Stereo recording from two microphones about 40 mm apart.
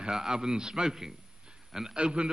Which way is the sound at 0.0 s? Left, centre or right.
Centre.